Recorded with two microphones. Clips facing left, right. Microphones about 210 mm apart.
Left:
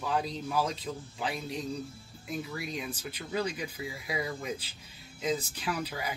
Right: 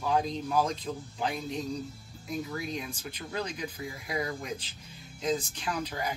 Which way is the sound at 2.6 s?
5° left (ahead or behind).